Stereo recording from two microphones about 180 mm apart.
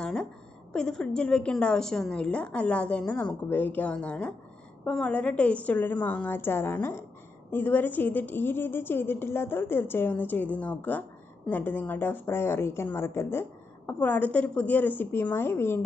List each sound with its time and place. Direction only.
0.0 s a woman's voice: 5° left (ahead or behind)